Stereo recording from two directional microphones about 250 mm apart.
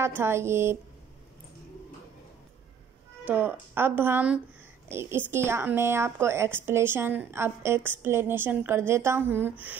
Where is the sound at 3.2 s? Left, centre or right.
Centre.